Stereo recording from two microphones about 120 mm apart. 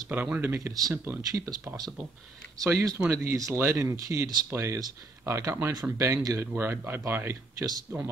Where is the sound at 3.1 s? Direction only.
25° right (ahead or behind).